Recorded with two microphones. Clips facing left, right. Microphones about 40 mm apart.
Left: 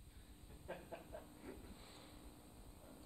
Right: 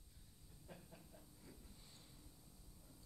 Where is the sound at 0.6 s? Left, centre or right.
Left.